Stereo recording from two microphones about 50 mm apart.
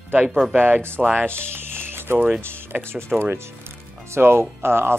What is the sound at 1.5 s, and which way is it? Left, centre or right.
Music, right.